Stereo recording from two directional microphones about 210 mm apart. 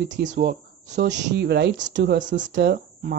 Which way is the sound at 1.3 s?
50° right (ahead or behind).